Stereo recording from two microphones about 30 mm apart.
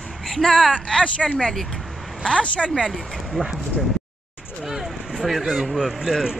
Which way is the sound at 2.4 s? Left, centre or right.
Left.